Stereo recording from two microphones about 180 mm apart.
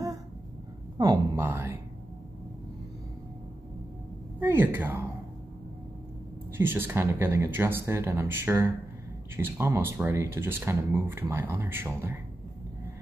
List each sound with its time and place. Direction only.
0.9 s speech: 25° right (ahead or behind)
1.3 s speech: 10° right (ahead or behind)
4.4 s speech: 10° right (ahead or behind)
6.5 s speech: 10° right (ahead or behind)